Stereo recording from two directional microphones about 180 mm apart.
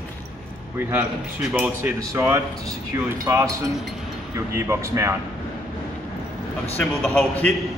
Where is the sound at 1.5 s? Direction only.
10° right (ahead or behind).